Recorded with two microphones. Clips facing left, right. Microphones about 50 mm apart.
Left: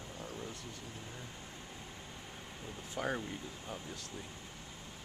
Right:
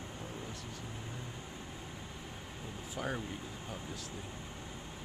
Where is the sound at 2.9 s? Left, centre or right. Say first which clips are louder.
Left 2 dB; centre.